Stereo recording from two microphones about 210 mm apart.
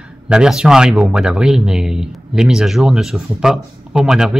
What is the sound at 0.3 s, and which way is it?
Speech, 5° right (ahead or behind).